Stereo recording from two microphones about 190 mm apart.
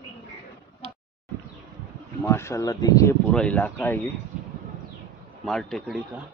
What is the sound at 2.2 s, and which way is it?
Speech, 15° left (ahead or behind).